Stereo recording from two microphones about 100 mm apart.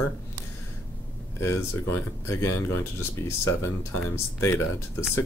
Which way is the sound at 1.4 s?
25° left (ahead or behind).